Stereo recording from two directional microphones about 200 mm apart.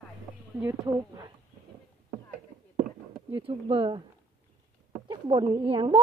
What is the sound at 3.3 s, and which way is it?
Speech, 25° right (ahead or behind).